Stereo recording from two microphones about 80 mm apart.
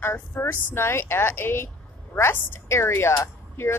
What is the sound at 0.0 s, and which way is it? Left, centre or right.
Speech, left.